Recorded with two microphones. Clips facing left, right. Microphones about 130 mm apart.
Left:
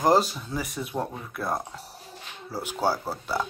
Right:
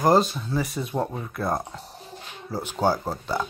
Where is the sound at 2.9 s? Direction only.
15° right (ahead or behind).